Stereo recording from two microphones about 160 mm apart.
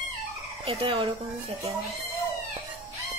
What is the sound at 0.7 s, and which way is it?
Fowl, 35° right (ahead or behind).